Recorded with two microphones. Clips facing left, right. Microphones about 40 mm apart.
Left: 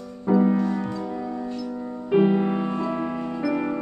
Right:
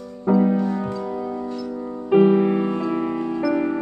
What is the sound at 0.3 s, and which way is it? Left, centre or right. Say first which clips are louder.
Music: right 2 dB; centre.